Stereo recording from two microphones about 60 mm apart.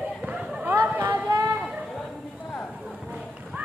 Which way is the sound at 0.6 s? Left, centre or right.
Right.